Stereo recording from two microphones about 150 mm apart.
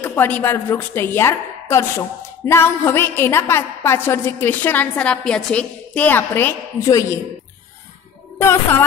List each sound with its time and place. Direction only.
0.0 s a woman's voice: 15° left (ahead or behind)
8.4 s a woman's voice: 15° left (ahead or behind)